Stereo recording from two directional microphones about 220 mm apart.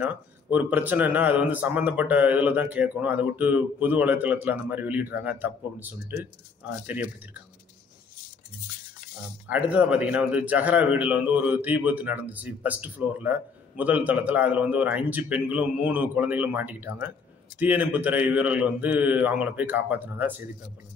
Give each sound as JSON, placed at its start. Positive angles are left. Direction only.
{"t": 0.0, "sound": "a man's voice", "side_deg": -5}
{"t": 9.5, "sound": "a man's voice", "side_deg": -5}